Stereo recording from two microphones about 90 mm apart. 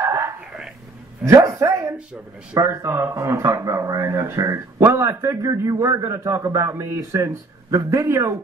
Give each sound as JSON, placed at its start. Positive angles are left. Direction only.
{"t": 0.0, "sound": "a sound", "side_deg": -35}
{"t": 1.2, "sound": "dog", "side_deg": -35}
{"t": 2.6, "sound": "a man's voice", "side_deg": -35}